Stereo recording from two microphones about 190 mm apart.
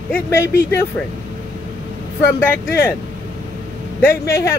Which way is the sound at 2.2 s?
10° left (ahead or behind).